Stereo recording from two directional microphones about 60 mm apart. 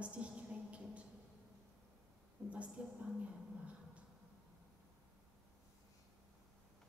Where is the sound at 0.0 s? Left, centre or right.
Right.